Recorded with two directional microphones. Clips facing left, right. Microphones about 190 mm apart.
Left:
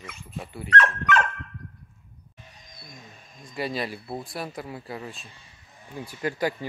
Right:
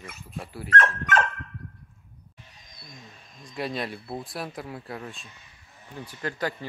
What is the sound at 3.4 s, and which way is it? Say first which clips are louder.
Speech: left 1 dB; centre (ahead or behind).